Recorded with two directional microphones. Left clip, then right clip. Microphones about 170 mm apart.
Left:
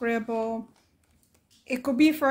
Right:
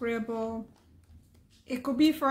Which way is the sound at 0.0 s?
45° left (ahead or behind).